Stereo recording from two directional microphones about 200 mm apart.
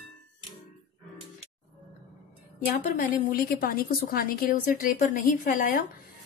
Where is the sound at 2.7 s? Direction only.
40° left (ahead or behind).